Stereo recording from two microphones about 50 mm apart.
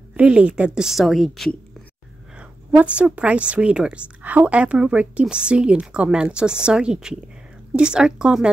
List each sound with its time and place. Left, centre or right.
0.1 s speech: right
0.7 s a woman's voice: centre
1.0 s a woman's voice: centre
2.3 s speech: right
4.2 s a woman's voice: right; by 8.5 s centre